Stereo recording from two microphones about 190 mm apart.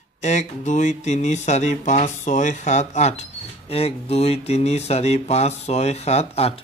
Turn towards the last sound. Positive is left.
turn(degrees=30)  # may be behind; listen again after turning